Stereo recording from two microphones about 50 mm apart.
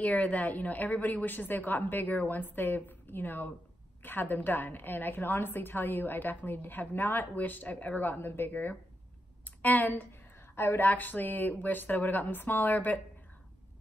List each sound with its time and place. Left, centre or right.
0.0 s a woman's voice: left